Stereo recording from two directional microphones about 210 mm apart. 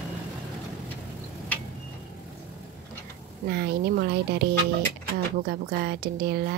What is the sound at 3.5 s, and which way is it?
A woman's voice, 50° right (ahead or behind).